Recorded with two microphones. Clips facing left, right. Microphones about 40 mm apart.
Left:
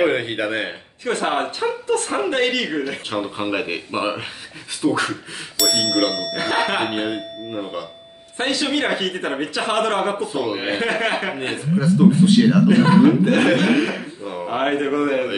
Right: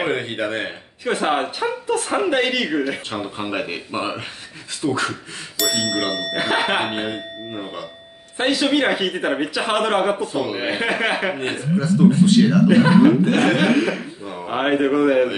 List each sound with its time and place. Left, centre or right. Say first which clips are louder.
0.0 s speech: left 3 dB; centre
1.0 s speech: right 1 dB; centre
3.3 s speech: left 2 dB; centre
5.7 s speech: left 3 dB; centre
12.6 s speech: even; centre
13.7 s speech: even; centre
14.5 s speech: right 2 dB; centre